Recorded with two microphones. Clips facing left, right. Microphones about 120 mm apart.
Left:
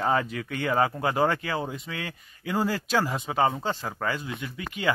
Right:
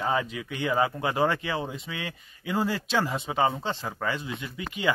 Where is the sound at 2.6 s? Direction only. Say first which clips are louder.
Left 1 dB; 5° left (ahead or behind).